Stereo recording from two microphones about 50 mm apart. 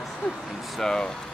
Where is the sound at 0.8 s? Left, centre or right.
Centre.